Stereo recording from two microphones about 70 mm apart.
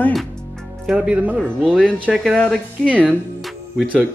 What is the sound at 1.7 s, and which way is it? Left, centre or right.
Speech, centre.